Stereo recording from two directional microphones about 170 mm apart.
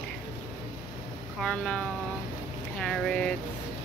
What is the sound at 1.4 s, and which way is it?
Speech, 5° left (ahead or behind).